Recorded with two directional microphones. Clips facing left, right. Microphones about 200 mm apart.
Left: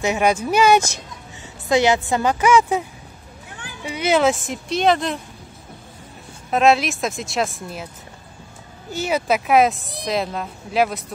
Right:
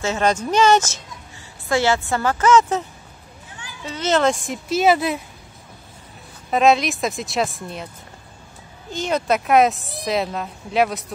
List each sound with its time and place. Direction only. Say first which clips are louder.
0.0 s a woman's voice: left 1 dB; 15° left (ahead or behind)
3.8 s a woman's voice: left 1 dB; 10° left (ahead or behind); by 5.2 s 5° right (ahead or behind)
6.5 s a woman's voice: even; centre (ahead or behind)
8.9 s a woman's voice: even; 5° left (ahead or behind)